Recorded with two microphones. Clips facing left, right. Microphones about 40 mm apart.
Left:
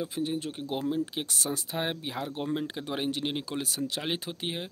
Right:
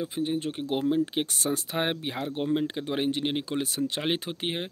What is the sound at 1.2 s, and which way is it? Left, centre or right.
Speech, right.